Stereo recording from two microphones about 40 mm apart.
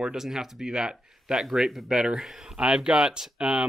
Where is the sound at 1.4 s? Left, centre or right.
Centre.